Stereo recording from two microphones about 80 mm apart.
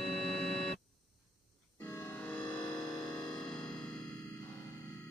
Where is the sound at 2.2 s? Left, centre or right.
Centre.